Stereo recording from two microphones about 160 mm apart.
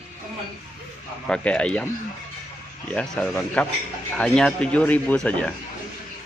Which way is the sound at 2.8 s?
5° left (ahead or behind).